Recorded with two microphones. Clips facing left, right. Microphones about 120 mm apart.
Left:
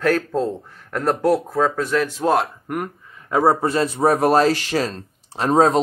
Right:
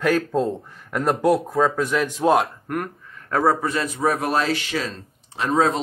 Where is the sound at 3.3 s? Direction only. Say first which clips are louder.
Left 3 dB; 25° left (ahead or behind).